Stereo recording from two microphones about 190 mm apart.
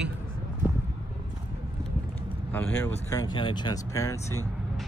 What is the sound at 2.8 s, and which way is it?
Speech, 15° left (ahead or behind).